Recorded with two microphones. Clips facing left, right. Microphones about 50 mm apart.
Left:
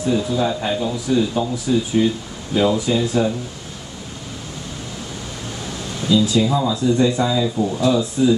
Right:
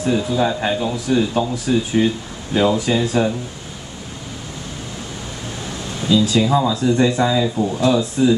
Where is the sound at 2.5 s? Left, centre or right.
Right.